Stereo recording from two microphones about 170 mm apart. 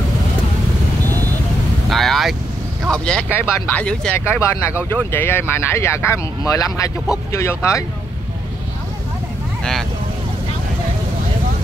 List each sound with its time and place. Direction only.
1.9 s vehicle: centre (ahead or behind)
2.9 s speech: 5° left (ahead or behind)